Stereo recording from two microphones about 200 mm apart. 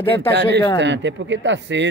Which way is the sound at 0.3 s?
60° right (ahead or behind).